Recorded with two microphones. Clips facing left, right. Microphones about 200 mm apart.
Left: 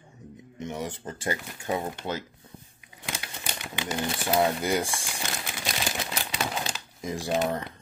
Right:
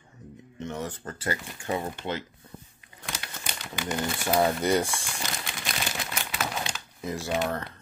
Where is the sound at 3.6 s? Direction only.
15° left (ahead or behind).